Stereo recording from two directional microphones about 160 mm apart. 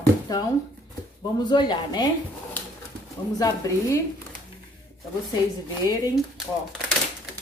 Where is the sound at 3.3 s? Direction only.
20° left (ahead or behind).